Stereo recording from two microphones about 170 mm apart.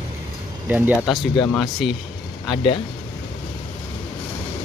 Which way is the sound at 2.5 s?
30° left (ahead or behind).